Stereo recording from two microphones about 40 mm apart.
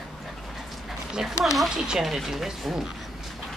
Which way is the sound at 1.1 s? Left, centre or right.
Centre.